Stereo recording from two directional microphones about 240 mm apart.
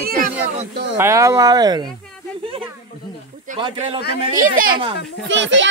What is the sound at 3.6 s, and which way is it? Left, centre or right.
Speech, right.